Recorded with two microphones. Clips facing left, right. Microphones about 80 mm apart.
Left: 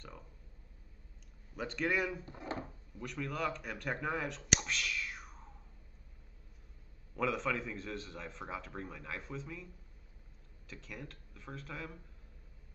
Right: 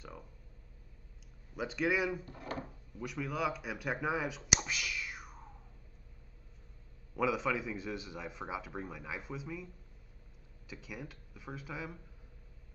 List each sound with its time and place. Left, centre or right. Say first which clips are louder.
1.5 s speech: right 2 dB; centre
2.2 s speech: even; left
3.0 s speech: right 2 dB; centre
7.2 s speech: right 2 dB; centre
10.7 s speech: right 2 dB; centre